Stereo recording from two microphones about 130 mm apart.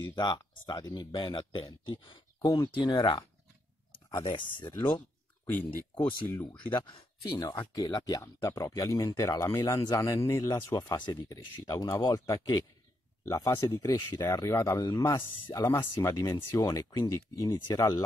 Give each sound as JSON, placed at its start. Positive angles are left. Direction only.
{"t": 0.0, "sound": "speech", "side_deg": 35}
{"t": 4.8, "sound": "a sound", "side_deg": 35}
{"t": 5.5, "sound": "speech", "side_deg": 15}
{"t": 6.7, "sound": "speech", "side_deg": 40}